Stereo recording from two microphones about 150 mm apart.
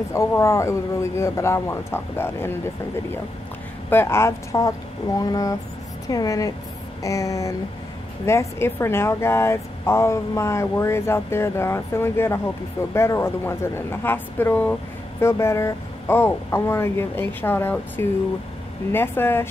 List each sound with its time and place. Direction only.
0.1 s speech: 20° left (ahead or behind)
3.9 s speech: 15° left (ahead or behind)